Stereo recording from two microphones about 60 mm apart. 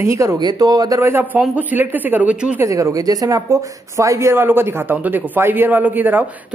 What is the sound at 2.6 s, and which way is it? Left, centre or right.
Speech, right.